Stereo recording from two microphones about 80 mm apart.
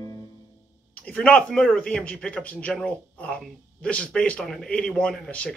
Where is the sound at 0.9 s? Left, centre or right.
Centre.